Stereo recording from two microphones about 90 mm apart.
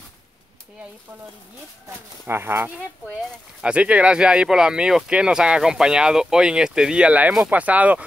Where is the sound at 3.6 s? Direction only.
10° right (ahead or behind).